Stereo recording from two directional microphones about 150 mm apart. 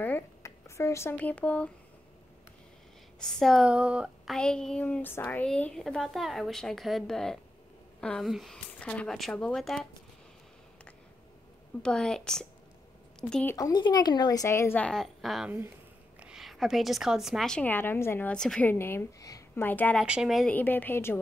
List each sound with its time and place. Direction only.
0.0 s speech: 15° left (ahead or behind)
3.2 s speech: 5° left (ahead or behind)
4.4 s speech: 5° left (ahead or behind)
11.8 s speech: 5° left (ahead or behind)
13.6 s a woman's voice: 25° left (ahead or behind)
18.3 s speech: 5° left (ahead or behind)
20.0 s speech: 5° right (ahead or behind)
20.5 s speech: 10° left (ahead or behind)